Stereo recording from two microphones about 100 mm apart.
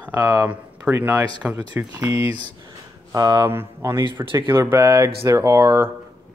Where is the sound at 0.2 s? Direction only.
30° right (ahead or behind); by 1.9 s 15° right (ahead or behind).